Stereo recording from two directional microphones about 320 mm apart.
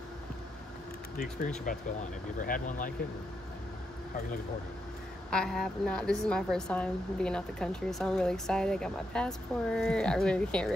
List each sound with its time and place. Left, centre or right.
1.7 s speech: left
5.3 s a woman's voice: centre